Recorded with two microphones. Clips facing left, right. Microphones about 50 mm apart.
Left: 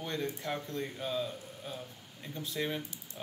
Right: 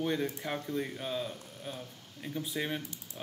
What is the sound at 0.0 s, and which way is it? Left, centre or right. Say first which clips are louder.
Speech: right 4 dB; centre.